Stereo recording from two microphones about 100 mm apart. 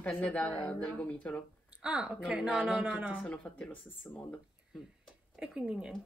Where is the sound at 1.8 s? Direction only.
10° right (ahead or behind).